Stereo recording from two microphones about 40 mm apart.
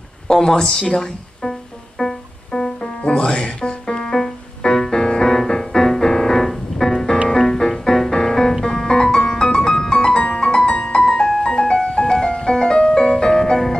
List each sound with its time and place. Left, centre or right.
0.3 s speech: centre
2.0 s music: centre
2.8 s music: left
4.1 s music: centre
11.0 s music: centre